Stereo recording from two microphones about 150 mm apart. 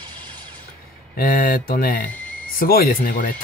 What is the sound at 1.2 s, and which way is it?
Speech, 75° left (ahead or behind).